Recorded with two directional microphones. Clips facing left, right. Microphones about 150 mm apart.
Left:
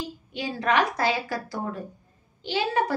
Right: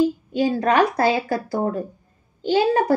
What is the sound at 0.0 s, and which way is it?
A woman's voice, 40° right (ahead or behind).